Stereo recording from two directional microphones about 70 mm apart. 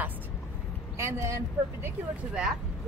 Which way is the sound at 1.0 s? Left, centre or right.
Right.